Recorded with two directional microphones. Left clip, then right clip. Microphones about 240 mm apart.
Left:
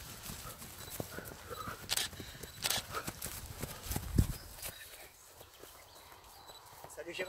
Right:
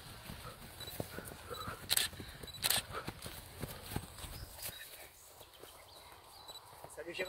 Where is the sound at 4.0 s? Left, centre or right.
Left.